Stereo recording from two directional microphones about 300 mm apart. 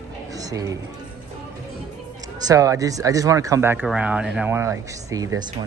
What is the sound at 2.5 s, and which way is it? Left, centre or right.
Speech, centre.